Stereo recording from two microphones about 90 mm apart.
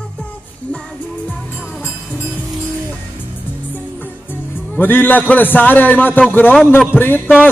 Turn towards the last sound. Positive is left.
turn(degrees=25)  # may be behind; listen again after turning